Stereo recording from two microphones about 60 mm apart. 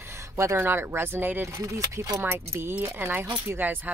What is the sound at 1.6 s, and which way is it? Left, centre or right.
Speech, right.